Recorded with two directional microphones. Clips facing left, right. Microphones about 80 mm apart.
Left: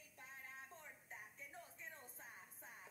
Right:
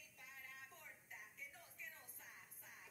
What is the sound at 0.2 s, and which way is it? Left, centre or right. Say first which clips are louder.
Music: left 2 dB; left.